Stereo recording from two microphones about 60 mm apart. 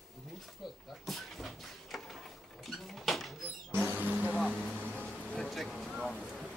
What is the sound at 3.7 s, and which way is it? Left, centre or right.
Vehicle, right.